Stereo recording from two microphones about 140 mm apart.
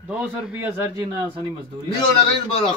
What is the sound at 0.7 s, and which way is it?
Speech, 25° right (ahead or behind).